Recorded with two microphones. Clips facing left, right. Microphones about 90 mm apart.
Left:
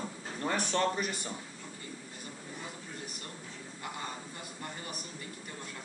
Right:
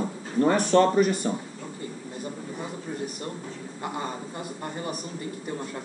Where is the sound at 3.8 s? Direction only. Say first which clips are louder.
Right 9 dB; 35° right (ahead or behind).